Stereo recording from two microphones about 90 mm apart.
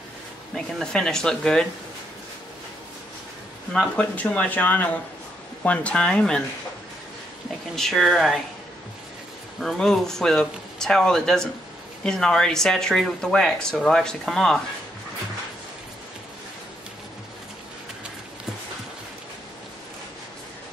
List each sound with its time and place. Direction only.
0.6 s speech: 5° left (ahead or behind)
3.7 s speech: 15° left (ahead or behind)
7.7 s speech: centre (ahead or behind)
9.6 s speech: 5° left (ahead or behind)